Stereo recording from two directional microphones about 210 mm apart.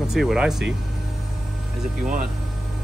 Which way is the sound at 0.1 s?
Centre (ahead or behind).